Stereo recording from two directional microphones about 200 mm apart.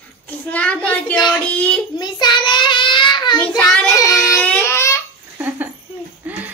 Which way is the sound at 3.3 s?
5° left (ahead or behind).